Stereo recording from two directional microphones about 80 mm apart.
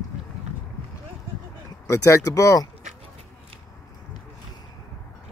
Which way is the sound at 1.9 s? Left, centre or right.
Left.